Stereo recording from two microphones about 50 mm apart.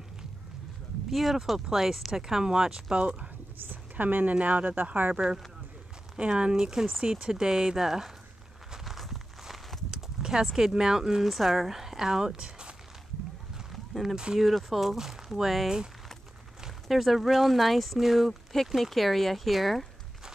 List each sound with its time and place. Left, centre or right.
1.1 s speech: centre
3.6 s speech: right
5.1 s speech: centre
8.7 s walk: centre
9.8 s speech: centre
13.7 s a sound: centre
14.1 s speech: centre
14.4 s speech: centre
16.8 s speech: centre